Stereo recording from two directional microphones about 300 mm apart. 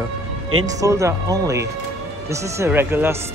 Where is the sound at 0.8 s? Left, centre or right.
Centre.